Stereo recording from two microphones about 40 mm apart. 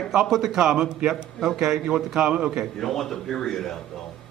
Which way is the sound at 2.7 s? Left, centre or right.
Centre.